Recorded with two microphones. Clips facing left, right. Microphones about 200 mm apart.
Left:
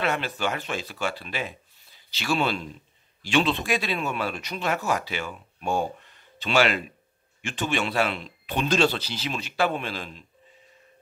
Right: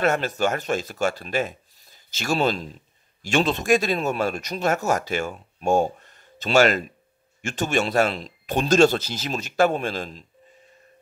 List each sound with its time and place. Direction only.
0.0 s speech: 45° right (ahead or behind)